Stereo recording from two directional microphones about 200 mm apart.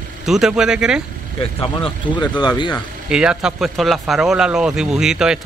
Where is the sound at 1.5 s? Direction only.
25° left (ahead or behind).